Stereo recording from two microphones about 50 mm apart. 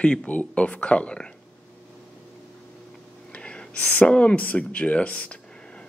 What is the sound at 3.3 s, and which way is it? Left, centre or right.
Gasp, left.